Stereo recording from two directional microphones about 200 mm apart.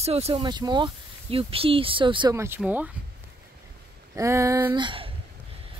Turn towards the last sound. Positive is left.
turn(degrees=-25)  # may be behind; listen again after turning